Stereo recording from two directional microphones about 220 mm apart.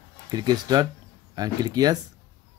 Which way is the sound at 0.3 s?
20° right (ahead or behind).